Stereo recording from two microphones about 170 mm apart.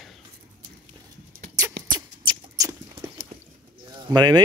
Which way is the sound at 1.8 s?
90° right.